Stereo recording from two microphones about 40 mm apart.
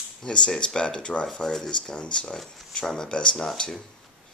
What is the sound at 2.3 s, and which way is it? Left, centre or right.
Speech, centre.